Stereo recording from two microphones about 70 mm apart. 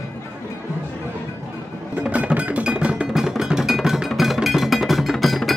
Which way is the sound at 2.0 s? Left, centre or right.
Centre.